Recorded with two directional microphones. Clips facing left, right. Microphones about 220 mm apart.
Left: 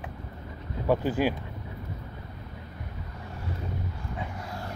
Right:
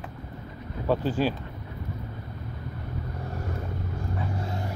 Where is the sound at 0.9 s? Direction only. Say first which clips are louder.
Even; 10° left (ahead or behind).